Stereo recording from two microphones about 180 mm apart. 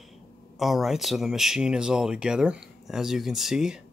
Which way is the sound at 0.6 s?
Centre (ahead or behind).